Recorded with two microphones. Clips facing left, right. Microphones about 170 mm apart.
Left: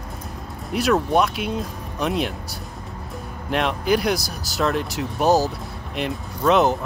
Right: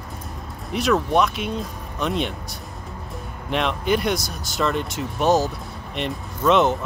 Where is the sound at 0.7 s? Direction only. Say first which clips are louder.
Left 1 dB; centre (ahead or behind).